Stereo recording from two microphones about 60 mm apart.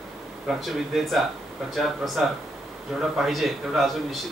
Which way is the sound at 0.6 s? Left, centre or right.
Centre.